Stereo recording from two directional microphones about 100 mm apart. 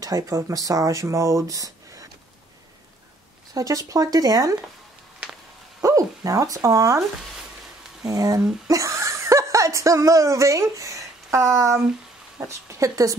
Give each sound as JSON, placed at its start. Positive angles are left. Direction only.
{"t": 0.0, "sound": "speech", "side_deg": -35}
{"t": 3.5, "sound": "speech", "side_deg": -35}
{"t": 5.8, "sound": "speech", "side_deg": -35}
{"t": 8.1, "sound": "speech", "side_deg": -35}